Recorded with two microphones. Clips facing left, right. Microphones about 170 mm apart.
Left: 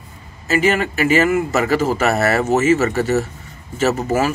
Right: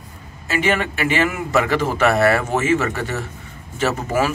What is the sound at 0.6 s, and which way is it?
Speech, 5° left (ahead or behind).